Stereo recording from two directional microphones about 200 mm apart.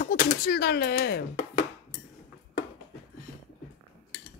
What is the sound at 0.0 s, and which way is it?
Speech, 45° left (ahead or behind).